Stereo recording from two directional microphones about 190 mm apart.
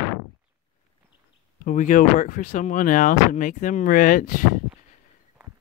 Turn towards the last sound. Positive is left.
turn(degrees=45)  # may be behind; listen again after turning